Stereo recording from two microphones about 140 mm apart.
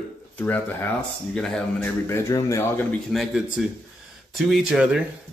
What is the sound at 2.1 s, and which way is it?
Speech, 20° left (ahead or behind).